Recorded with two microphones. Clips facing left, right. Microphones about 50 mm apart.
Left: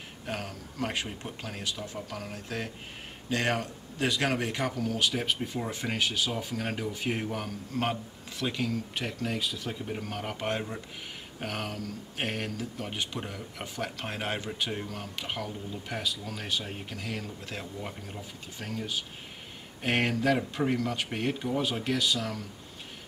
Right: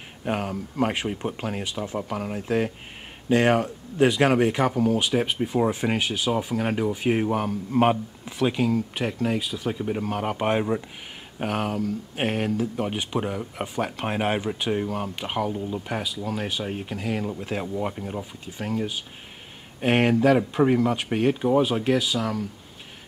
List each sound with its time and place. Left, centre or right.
0.2 s speech: right